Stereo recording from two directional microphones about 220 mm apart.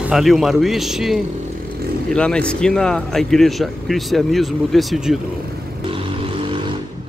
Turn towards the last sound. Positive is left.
turn(degrees=0)  # may be behind; listen again after turning